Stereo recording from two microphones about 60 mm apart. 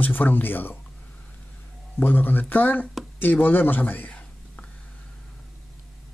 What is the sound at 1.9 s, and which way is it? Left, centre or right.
Speech, left.